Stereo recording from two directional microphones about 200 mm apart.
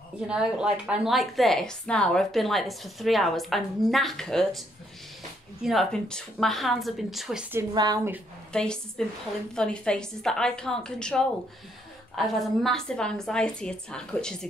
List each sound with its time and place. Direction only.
0.3 s a woman's voice: 5° right (ahead or behind)
7.5 s a woman's voice: 20° right (ahead or behind)
8.5 s a woman's voice: 5° left (ahead or behind)